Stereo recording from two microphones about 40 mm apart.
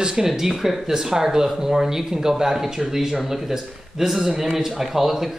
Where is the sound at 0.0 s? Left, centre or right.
Right.